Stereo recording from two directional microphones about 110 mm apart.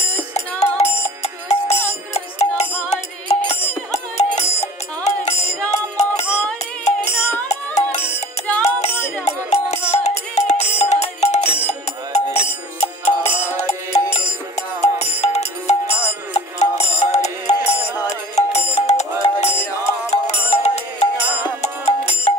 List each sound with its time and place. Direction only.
0.3 s music: 90° left
1.0 s music: 75° left (ahead or behind)
3.9 s music: 90° left
7.1 s music: 20° left (ahead or behind)
7.4 s music: 90° left
8.0 s music: 15° left (ahead or behind)
9.2 s music: 90° left